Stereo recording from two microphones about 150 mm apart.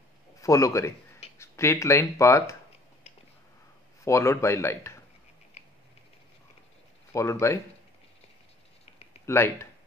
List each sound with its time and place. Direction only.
0.4 s a man's voice: 20° left (ahead or behind)
4.0 s speech: 20° left (ahead or behind)
7.1 s speech: 20° left (ahead or behind)
9.2 s speech: 15° left (ahead or behind)